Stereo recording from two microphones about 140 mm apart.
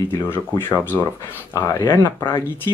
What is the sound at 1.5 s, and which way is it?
Speech, 20° left (ahead or behind).